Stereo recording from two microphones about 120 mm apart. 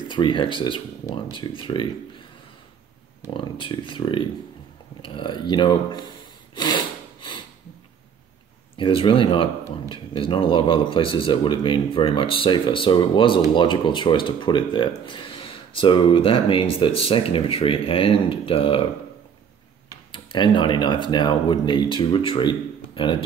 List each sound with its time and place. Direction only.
0.1 s speech: 40° left (ahead or behind)
3.3 s speech: 45° left (ahead or behind)
6.5 s a sound: 35° left (ahead or behind)
8.7 s speech: 45° left (ahead or behind)
20.1 s speech: 40° left (ahead or behind)